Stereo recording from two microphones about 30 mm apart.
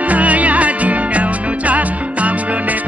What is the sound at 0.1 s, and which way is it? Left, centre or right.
Music, right.